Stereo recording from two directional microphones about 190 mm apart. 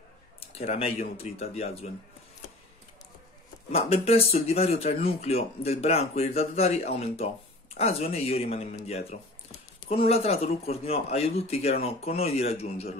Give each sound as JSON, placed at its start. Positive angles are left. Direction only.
{"t": 0.4, "sound": "speech", "side_deg": 35}
{"t": 3.7, "sound": "speech", "side_deg": 30}